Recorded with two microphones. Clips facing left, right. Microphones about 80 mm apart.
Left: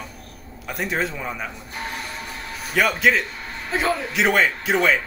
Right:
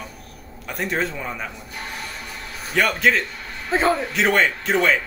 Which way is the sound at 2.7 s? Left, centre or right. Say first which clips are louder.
Even; centre.